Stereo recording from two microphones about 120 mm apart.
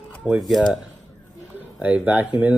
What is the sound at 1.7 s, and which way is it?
Speech, 10° right (ahead or behind).